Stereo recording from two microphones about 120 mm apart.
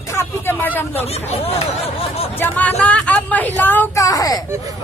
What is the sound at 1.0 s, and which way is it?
Speech, 60° left (ahead or behind).